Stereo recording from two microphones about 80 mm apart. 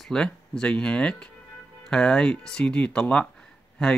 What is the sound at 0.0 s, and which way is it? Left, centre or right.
Speech, centre.